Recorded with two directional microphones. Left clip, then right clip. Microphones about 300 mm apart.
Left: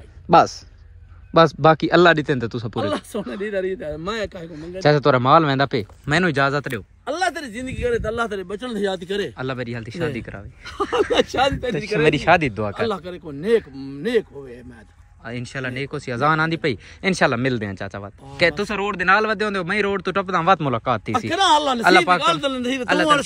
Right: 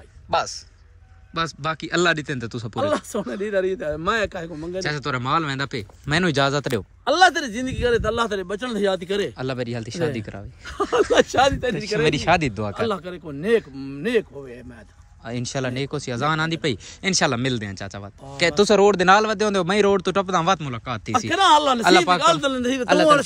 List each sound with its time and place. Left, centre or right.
1.3 s a man's voice: centre
4.6 s a man's voice: centre
7.1 s speech: right
8.2 s a man's voice: centre
15.2 s a man's voice: centre
18.6 s a man's voice: centre